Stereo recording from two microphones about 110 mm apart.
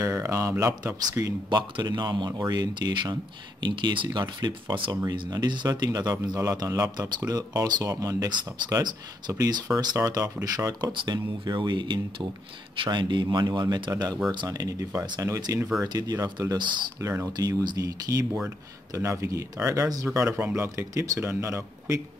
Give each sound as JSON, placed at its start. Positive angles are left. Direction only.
{"t": 0.0, "sound": "speech", "side_deg": -25}
{"t": 1.5, "sound": "speech", "side_deg": -45}
{"t": 17.0, "sound": "speech", "side_deg": -30}
{"t": 20.2, "sound": "speech", "side_deg": -15}